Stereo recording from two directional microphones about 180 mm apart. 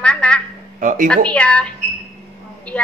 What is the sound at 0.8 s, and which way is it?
Speech, 45° right (ahead or behind).